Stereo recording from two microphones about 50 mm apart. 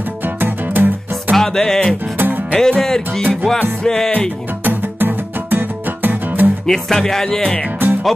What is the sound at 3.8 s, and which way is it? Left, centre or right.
Music, centre.